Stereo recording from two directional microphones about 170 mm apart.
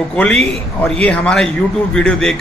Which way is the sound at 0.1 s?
5° left (ahead or behind).